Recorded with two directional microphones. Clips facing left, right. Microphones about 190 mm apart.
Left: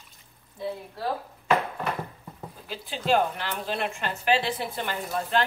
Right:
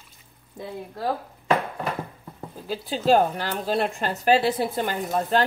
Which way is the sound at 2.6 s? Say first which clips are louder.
Right 6 dB; 40° right (ahead or behind).